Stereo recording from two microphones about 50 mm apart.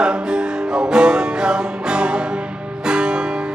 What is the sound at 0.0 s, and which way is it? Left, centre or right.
Music, centre.